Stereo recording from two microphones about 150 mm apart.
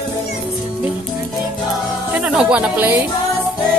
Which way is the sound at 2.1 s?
10° right (ahead or behind).